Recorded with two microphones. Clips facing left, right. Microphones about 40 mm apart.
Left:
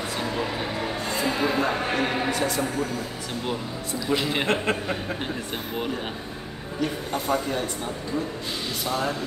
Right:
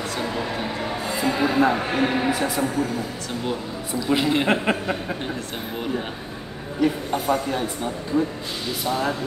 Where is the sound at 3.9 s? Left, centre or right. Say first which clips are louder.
Right 4 dB; centre.